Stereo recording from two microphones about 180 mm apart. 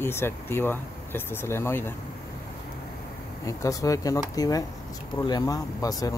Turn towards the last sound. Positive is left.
turn(degrees=20)  # may be behind; listen again after turning